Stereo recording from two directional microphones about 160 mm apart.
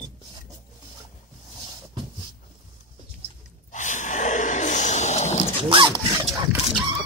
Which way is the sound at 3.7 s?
50° left (ahead or behind).